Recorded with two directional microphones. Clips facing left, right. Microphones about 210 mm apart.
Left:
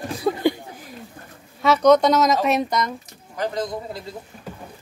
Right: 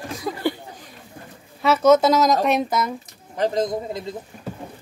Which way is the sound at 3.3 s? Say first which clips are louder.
Right 4 dB; 25° right (ahead or behind).